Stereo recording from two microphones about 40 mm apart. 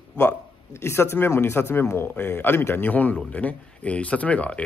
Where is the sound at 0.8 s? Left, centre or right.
Left.